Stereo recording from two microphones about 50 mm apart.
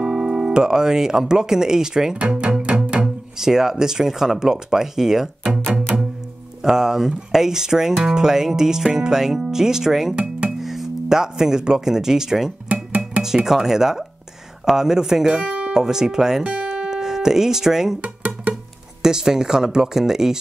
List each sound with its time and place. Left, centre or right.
0.0 s speech: centre
2.1 s speech: right; by 5.3 s centre
5.9 s music: centre
6.6 s speech: centre
12.6 s music: right
13.2 s speech: centre
16.6 s guitar: centre
18.0 s music: right
19.0 s speech: centre